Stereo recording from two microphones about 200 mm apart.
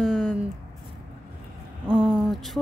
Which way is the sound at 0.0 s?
Centre (ahead or behind).